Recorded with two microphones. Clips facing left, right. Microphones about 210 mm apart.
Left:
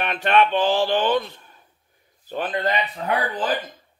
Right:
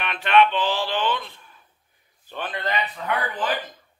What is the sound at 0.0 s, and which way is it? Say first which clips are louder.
Speech: even; 45° left (ahead or behind).